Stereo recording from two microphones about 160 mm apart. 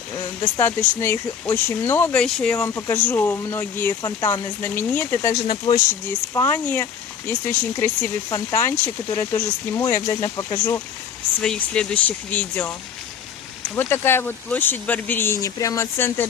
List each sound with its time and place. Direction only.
0.4 s speech: 10° left (ahead or behind)
11.4 s speech: 5° left (ahead or behind)
13.7 s speech: 15° left (ahead or behind)